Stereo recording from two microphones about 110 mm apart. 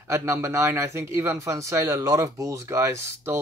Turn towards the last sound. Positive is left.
turn(degrees=-25)  # may be behind; listen again after turning